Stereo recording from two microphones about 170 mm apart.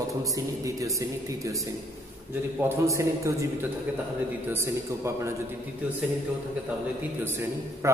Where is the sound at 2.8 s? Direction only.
20° right (ahead or behind).